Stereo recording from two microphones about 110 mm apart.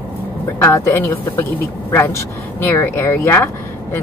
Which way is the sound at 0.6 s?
25° left (ahead or behind).